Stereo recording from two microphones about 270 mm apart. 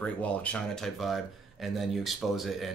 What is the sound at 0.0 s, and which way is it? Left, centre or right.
Speech, centre.